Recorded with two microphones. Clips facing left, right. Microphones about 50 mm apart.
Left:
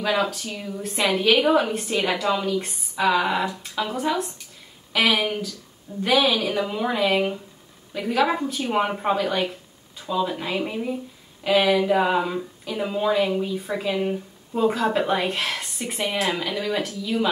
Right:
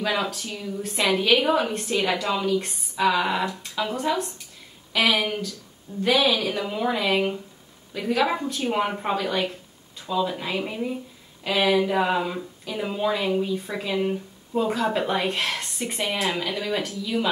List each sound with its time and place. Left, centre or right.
0.0 s speech: centre